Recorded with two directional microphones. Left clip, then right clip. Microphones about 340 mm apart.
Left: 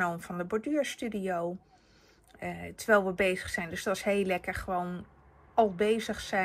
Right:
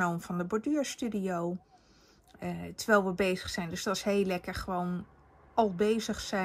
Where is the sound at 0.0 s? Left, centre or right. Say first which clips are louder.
Even; centre.